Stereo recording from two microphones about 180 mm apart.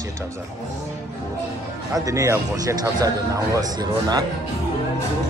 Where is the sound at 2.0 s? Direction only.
20° right (ahead or behind).